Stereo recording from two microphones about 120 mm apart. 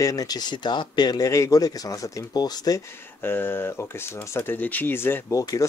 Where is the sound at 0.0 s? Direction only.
30° left (ahead or behind).